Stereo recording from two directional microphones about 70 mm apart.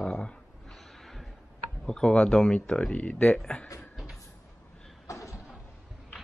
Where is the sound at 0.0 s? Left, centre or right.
Centre.